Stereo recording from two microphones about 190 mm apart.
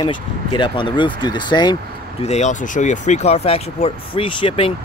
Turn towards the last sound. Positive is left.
turn(degrees=30)  # may be behind; listen again after turning